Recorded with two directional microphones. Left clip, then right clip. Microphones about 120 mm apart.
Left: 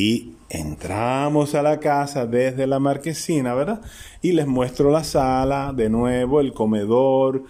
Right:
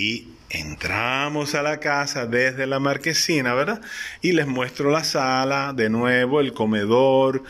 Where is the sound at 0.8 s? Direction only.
40° left (ahead or behind).